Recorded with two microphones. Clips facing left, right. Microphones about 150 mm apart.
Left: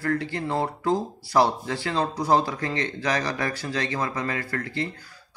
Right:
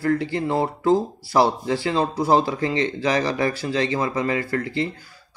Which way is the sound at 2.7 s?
20° right (ahead or behind).